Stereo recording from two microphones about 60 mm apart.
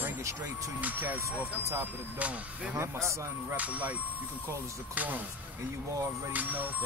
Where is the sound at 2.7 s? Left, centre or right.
Right.